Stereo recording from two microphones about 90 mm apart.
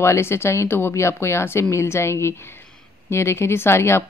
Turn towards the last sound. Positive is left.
turn(degrees=30)  # may be behind; listen again after turning